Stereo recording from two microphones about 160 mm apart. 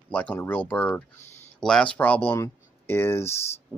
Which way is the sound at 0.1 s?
10° left (ahead or behind).